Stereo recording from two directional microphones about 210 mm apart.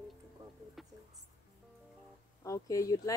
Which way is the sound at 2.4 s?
15° left (ahead or behind).